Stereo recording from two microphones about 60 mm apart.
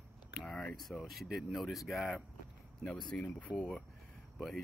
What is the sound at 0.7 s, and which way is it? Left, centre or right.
Speech, centre.